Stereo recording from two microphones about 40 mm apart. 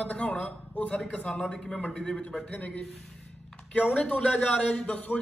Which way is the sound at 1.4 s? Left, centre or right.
Centre.